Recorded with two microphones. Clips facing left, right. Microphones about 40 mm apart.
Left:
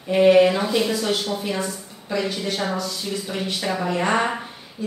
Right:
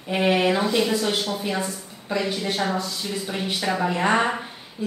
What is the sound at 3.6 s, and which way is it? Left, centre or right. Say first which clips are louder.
Speech: right 1 dB; centre.